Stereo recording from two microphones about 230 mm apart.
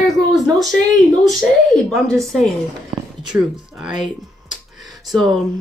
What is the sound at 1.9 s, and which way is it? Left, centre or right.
Speech, centre.